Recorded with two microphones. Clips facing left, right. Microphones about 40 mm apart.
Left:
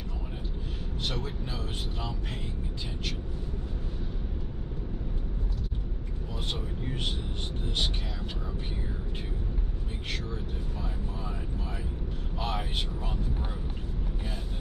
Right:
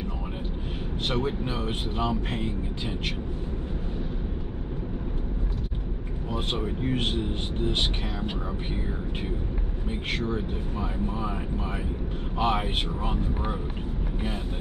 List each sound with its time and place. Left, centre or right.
1.0 s speech: right
6.3 s speech: right
10.1 s speech: right